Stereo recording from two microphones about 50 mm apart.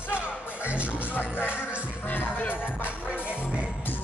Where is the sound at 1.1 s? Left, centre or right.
Left.